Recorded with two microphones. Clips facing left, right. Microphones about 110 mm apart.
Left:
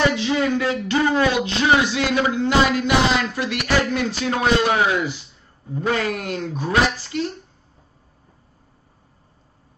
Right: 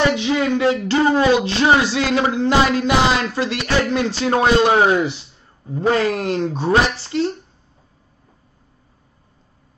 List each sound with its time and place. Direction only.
0.1 s a man's voice: 25° right (ahead or behind)